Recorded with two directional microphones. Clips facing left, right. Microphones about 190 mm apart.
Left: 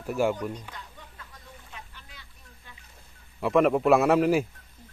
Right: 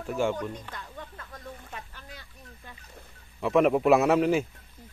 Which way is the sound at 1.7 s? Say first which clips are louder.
Right 4 dB; 45° right (ahead or behind).